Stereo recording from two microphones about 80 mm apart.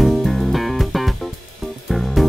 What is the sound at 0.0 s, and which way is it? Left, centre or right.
Music, centre.